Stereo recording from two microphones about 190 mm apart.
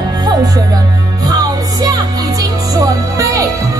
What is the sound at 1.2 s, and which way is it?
Music, 20° right (ahead or behind).